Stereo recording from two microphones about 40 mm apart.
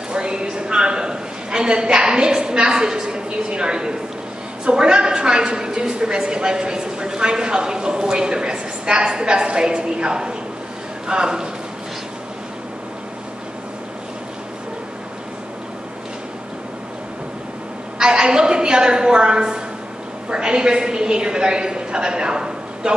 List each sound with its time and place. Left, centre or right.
0.1 s a sound: right
4.6 s a woman's voice: right
17.9 s a woman's voice: right